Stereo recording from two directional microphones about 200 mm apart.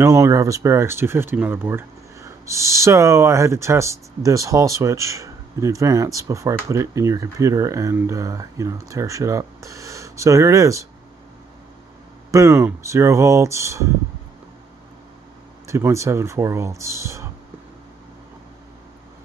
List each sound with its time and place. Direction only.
0.0 s speech: 15° right (ahead or behind)
12.3 s speech: 15° right (ahead or behind)
15.6 s speech: 15° right (ahead or behind)